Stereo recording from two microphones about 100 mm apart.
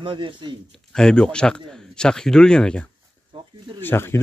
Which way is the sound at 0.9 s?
5° left (ahead or behind).